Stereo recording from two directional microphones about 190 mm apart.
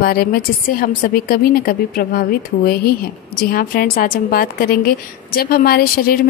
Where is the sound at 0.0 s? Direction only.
55° left (ahead or behind).